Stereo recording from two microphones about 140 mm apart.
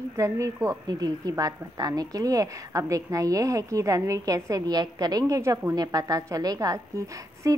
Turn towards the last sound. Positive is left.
turn(degrees=-25)  # may be behind; listen again after turning